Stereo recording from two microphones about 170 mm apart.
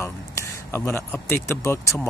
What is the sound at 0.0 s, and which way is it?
Speech, 15° left (ahead or behind).